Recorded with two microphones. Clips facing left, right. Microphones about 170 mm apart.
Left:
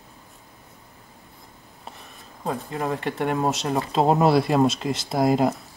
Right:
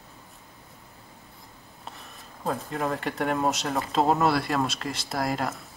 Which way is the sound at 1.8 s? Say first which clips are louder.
Left 1 dB; centre (ahead or behind).